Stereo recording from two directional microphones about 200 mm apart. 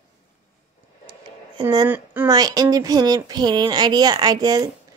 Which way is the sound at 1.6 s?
15° right (ahead or behind).